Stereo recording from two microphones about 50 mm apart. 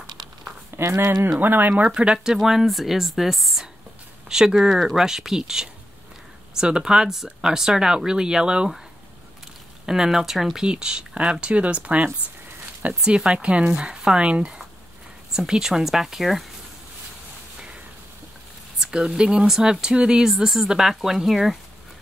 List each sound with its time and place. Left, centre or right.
0.7 s speech: right
1.4 s speech: right
1.9 s a woman's voice: centre
9.8 s speech: centre
10.6 s speech: centre
18.8 s speech: centre